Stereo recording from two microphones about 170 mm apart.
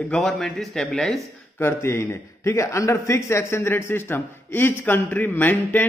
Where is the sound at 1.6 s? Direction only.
15° left (ahead or behind).